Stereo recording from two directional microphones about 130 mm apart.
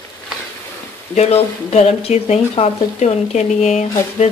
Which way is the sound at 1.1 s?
55° left (ahead or behind).